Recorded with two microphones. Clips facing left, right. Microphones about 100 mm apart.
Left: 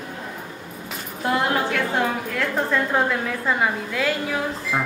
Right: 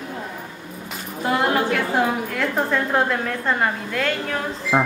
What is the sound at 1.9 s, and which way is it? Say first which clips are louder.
A woman's voice: right 2 dB; centre (ahead or behind).